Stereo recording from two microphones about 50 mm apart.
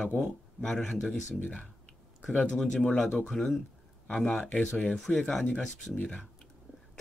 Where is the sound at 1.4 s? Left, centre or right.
Left.